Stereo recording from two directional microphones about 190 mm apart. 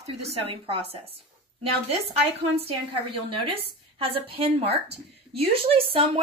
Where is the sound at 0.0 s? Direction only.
30° right (ahead or behind).